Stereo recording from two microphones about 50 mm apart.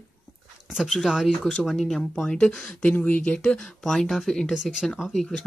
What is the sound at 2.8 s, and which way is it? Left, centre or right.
Speech, left.